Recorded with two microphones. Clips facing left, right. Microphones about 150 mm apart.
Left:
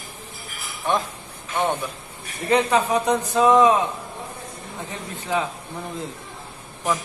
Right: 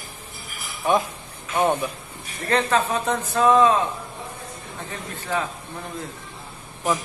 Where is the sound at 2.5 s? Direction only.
15° left (ahead or behind).